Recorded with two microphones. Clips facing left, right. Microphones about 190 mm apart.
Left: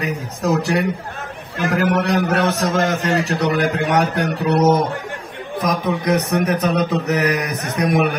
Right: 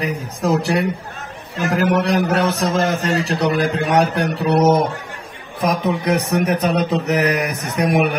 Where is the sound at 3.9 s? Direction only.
30° right (ahead or behind).